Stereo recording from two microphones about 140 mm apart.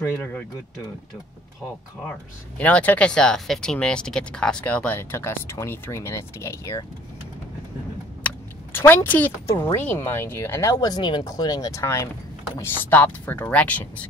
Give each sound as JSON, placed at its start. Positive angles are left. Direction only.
{"t": 0.0, "sound": "speech", "side_deg": 15}
{"t": 2.0, "sound": "speech", "side_deg": 10}
{"t": 8.7, "sound": "speech", "side_deg": 15}